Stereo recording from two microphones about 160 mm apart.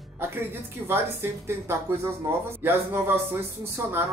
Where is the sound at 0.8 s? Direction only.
15° right (ahead or behind).